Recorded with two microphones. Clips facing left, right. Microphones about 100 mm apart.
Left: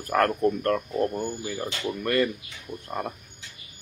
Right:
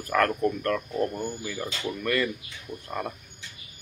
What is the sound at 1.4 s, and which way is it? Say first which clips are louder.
Speech: left 2 dB; 40° left (ahead or behind).